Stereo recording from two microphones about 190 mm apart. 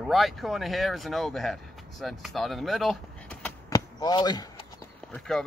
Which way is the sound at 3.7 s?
20° left (ahead or behind).